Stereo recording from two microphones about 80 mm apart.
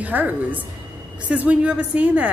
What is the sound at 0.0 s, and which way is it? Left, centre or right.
A woman's voice, right.